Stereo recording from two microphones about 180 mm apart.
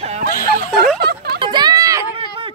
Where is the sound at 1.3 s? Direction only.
25° right (ahead or behind).